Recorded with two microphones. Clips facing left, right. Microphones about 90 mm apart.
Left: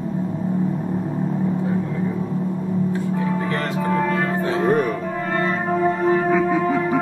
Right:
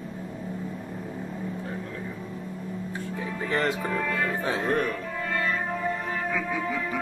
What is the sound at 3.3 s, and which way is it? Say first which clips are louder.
Music: left 4 dB; 45° left (ahead or behind).